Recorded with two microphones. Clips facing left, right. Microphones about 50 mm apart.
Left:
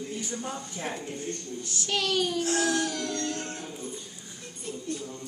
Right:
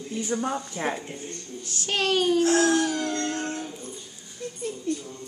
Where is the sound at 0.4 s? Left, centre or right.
Right.